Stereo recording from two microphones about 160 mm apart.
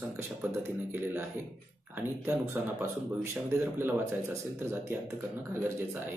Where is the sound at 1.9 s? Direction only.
15° right (ahead or behind).